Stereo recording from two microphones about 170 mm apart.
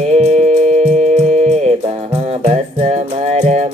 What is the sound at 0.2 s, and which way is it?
Music, 40° right (ahead or behind).